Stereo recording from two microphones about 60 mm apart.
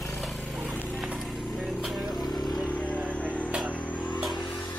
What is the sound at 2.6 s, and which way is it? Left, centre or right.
Vehicle, left.